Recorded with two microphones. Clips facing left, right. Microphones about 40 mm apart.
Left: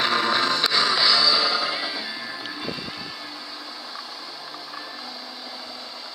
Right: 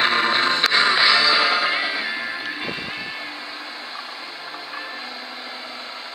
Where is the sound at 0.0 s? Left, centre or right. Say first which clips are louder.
Right 3 dB; right.